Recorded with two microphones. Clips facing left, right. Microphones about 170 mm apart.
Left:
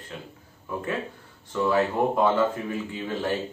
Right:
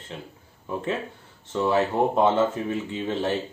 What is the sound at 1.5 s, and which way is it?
Speech, 25° right (ahead or behind).